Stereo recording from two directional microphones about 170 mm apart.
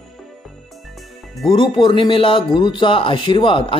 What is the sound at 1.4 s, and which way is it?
Speech, 30° left (ahead or behind).